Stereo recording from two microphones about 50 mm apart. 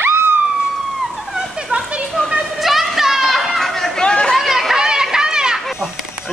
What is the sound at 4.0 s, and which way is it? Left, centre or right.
Chatter, centre.